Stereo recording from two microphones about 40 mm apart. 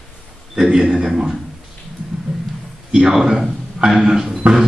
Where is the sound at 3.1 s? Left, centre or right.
Centre.